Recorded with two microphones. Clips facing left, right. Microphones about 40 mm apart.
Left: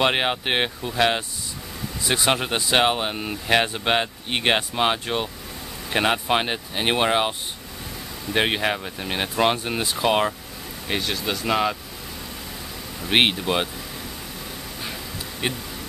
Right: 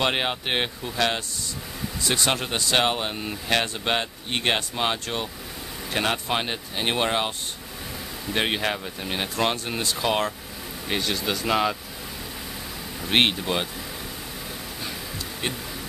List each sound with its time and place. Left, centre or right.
0.0 s speech: centre
10.9 s speech: centre
13.1 s speech: centre
15.4 s speech: centre